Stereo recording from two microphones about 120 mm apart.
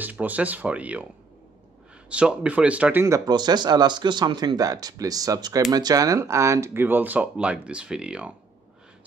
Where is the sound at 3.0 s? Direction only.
30° right (ahead or behind).